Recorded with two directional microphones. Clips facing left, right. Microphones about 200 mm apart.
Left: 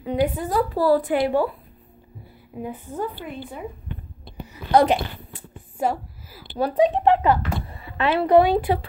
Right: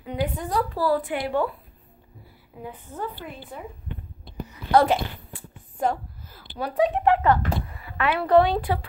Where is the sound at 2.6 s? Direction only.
10° left (ahead or behind).